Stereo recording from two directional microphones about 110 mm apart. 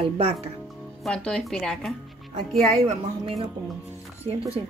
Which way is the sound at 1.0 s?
5° left (ahead or behind).